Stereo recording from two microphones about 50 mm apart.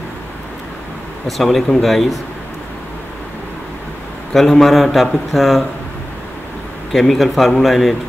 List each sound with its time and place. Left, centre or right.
1.2 s a man's voice: centre
4.3 s a man's voice: centre
6.9 s a man's voice: centre